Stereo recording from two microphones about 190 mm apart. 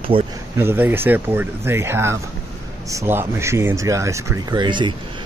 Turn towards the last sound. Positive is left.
turn(degrees=-25)  # may be behind; listen again after turning